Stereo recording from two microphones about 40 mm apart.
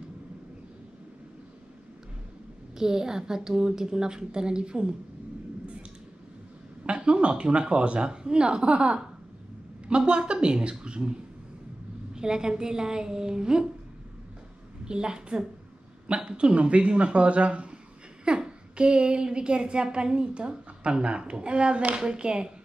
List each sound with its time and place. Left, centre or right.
2.8 s a woman's voice: centre
6.9 s a woman's voice: right
14.9 s a woman's voice: right